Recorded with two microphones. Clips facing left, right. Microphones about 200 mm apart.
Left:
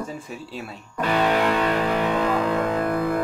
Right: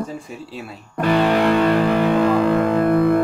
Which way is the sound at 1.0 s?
35° right (ahead or behind).